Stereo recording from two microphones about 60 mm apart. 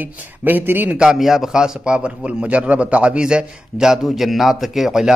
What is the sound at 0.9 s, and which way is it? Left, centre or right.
A man's voice, centre.